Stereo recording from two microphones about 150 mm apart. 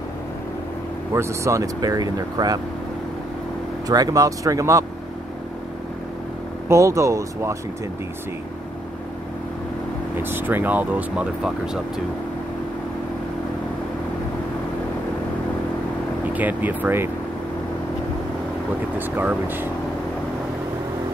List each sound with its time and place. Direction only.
1.1 s speech: 20° right (ahead or behind)
3.8 s speech: 25° right (ahead or behind)
6.7 s speech: 20° right (ahead or behind)
10.2 s speech: 15° right (ahead or behind)
16.3 s speech: 10° right (ahead or behind)
18.9 s speech: 15° right (ahead or behind)